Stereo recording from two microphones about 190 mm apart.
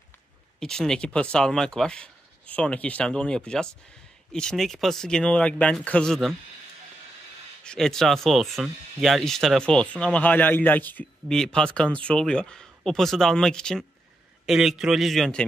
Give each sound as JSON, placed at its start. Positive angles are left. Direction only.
{"t": 0.6, "sound": "speech", "side_deg": 5}
{"t": 7.6, "sound": "speech", "side_deg": 5}